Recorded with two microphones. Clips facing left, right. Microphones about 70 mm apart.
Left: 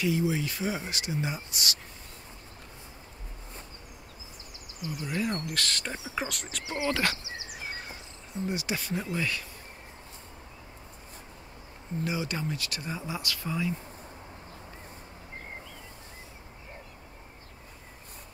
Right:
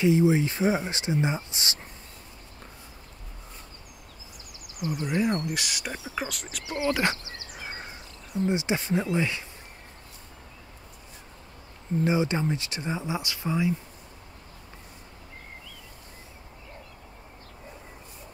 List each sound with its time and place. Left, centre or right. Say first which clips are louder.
0.0 s speech: right 7 dB; right
5.0 s speech: right 5 dB; right
6.0 s speech: right 1 dB; centre
6.9 s speech: right 3 dB; right
7.2 s a sound: left 2 dB; centre
7.6 s a sound: right 2 dB; right
8.5 s speech: right 6 dB; right
12.0 s speech: right 7 dB; right